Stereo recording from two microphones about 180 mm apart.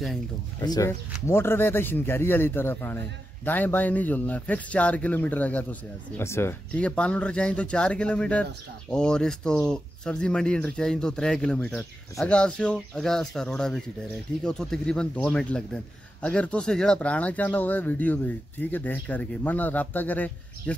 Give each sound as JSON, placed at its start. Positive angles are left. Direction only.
{"t": 0.6, "sound": "a man's voice", "side_deg": 20}